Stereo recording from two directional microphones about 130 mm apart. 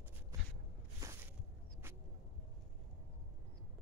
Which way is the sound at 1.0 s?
25° right (ahead or behind).